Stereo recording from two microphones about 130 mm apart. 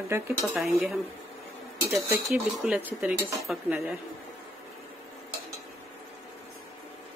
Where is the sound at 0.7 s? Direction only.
5° right (ahead or behind).